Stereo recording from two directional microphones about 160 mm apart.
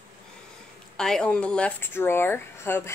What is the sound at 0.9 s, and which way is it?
Speech, 5° left (ahead or behind).